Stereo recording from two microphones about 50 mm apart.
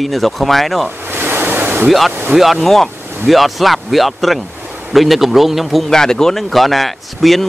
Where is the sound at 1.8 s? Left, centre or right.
Centre.